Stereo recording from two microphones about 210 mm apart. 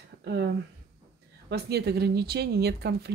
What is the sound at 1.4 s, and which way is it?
Speech, 50° right (ahead or behind).